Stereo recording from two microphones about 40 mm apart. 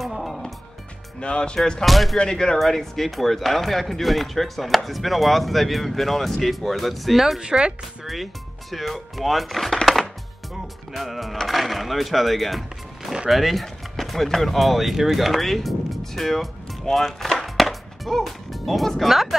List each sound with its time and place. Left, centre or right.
1.2 s speech: left
1.9 s speech: centre
2.1 s speech: centre
7.3 s speech: centre
8.0 s speech: centre
10.9 s speech: centre
17.6 s music: centre